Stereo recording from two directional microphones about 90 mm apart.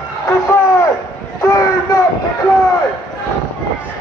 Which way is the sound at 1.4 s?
35° left (ahead or behind).